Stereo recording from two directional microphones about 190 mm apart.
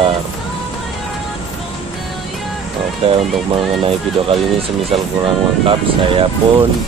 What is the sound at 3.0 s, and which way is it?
Speech, 30° right (ahead or behind).